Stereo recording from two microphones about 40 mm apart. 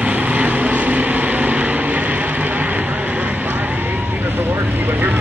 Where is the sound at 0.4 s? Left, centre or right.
Right.